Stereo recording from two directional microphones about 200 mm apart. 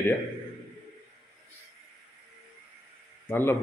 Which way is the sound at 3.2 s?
10° left (ahead or behind).